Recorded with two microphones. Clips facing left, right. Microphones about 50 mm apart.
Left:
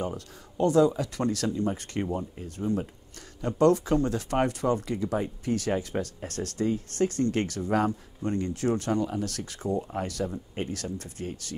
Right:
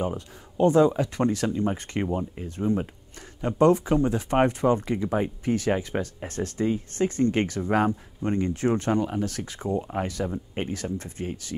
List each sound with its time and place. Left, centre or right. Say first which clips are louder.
0.0 s speech: right 4 dB; right
2.4 s speech: right 3 dB; right